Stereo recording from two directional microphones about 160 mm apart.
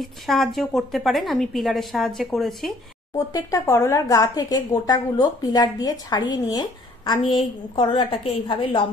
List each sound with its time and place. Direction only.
0.0 s a woman's voice: centre (ahead or behind)
3.2 s a woman's voice: 20° left (ahead or behind)